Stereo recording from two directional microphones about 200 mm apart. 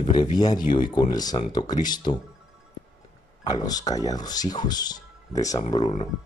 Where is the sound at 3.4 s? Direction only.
20° left (ahead or behind).